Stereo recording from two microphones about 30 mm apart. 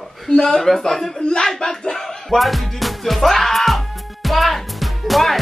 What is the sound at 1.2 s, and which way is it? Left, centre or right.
Speech, left.